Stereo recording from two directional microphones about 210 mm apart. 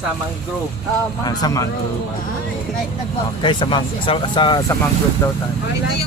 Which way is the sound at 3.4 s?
20° left (ahead or behind).